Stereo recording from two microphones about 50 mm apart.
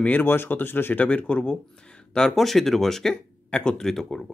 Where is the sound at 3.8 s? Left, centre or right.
Centre.